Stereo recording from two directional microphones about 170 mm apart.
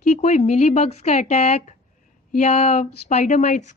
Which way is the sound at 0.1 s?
45° left (ahead or behind).